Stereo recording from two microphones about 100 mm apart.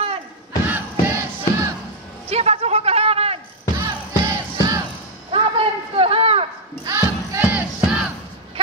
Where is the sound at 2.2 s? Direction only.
90° right.